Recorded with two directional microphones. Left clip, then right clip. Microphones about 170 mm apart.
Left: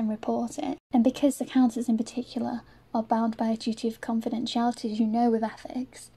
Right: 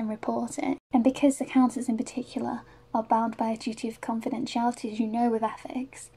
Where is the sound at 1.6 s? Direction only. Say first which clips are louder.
Left 2 dB; 20° left (ahead or behind).